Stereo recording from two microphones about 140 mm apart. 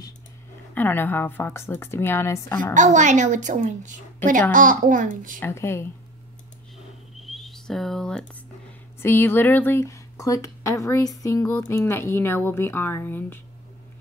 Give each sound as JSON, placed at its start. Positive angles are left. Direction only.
{"t": 0.7, "sound": "speech", "side_deg": 15}
{"t": 2.7, "sound": "a woman's voice", "side_deg": -60}
{"t": 5.4, "sound": "speech", "side_deg": 20}
{"t": 7.2, "sound": "a sound", "side_deg": 0}
{"t": 9.0, "sound": "speech", "side_deg": 15}